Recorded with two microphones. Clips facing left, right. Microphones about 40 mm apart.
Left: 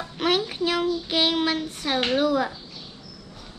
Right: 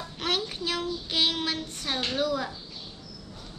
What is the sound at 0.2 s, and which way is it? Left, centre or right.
Child singing, centre.